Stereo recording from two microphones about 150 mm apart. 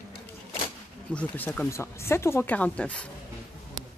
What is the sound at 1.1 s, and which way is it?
Speech, 10° left (ahead or behind).